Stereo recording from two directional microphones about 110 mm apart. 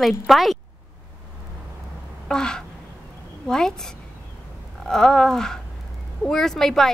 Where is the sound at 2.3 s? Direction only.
5° left (ahead or behind).